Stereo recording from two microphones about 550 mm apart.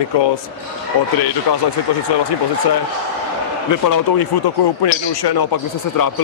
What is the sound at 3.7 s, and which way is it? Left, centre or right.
A man's voice, left.